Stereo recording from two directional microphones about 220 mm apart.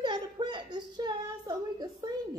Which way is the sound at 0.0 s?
20° right (ahead or behind).